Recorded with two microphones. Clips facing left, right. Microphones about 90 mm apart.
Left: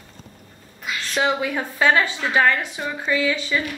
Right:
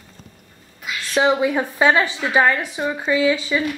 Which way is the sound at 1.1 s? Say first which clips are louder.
Right 5 dB; 20° right (ahead or behind).